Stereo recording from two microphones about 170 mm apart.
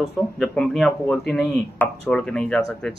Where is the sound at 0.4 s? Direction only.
5° left (ahead or behind).